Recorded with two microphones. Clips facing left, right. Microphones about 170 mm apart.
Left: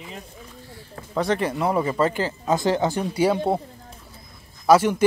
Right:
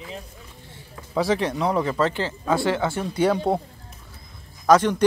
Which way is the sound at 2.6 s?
40° left (ahead or behind).